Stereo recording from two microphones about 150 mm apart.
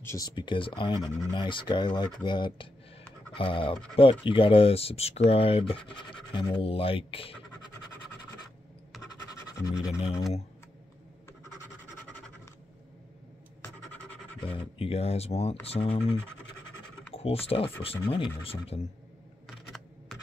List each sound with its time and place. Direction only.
0.0 s speech: 20° left (ahead or behind)
0.4 s speech: 35° left (ahead or behind)
9.6 s a sound: 20° left (ahead or behind)
14.4 s speech: 35° left (ahead or behind)
19.4 s camera: centre (ahead or behind)